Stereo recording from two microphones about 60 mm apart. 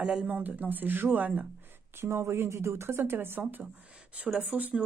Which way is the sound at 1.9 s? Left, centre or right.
Right.